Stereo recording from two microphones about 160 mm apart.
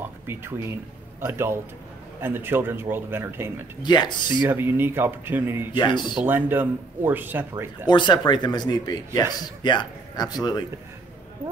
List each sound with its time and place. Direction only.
0.3 s speech: 15° right (ahead or behind)
3.8 s speech: 30° left (ahead or behind)
4.5 s speech: 15° right (ahead or behind)
5.8 s speech: 30° left (ahead or behind)
6.1 s speech: 10° right (ahead or behind)
7.8 s speech: 30° left (ahead or behind)